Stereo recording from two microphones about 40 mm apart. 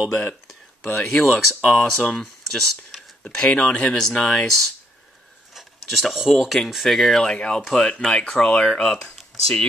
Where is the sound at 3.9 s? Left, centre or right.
Centre.